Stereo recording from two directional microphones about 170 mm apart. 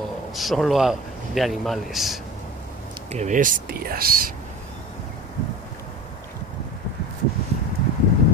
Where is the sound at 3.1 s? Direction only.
50° right (ahead or behind).